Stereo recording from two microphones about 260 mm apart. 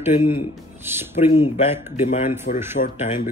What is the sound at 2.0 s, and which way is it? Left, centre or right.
Speech, left.